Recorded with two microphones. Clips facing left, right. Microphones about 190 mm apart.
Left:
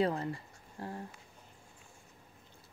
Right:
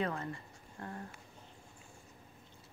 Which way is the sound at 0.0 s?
30° left (ahead or behind).